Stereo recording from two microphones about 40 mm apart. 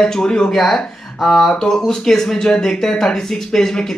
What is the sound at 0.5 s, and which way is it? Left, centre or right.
Speech, centre.